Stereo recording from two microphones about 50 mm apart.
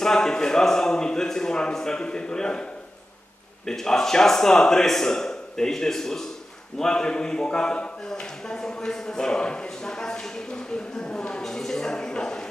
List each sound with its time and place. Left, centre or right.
0.0 s a man's voice: centre